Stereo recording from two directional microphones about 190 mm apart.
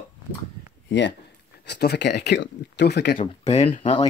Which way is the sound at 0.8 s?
65° left (ahead or behind).